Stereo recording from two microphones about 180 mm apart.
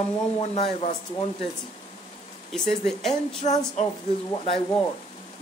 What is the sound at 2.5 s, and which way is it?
Speech, 5° left (ahead or behind).